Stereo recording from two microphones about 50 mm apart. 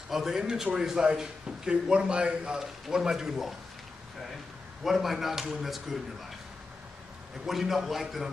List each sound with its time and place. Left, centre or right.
0.1 s a man's voice: centre
4.8 s speech: centre
7.4 s speech: centre